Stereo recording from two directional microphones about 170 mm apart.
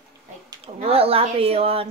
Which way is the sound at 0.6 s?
35° right (ahead or behind).